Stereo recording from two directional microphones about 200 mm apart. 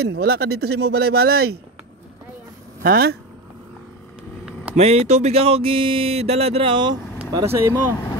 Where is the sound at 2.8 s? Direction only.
50° right (ahead or behind).